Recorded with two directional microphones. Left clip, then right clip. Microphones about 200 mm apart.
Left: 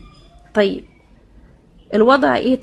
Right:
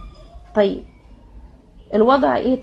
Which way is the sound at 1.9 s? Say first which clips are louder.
Left 2 dB; 20° left (ahead or behind).